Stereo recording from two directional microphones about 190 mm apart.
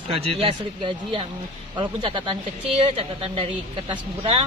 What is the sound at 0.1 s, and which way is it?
Speech, 30° right (ahead or behind).